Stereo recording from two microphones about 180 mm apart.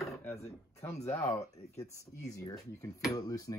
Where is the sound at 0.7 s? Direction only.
15° left (ahead or behind).